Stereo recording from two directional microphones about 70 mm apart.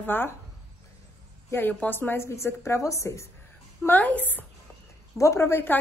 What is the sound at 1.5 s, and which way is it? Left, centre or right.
A woman's voice, left.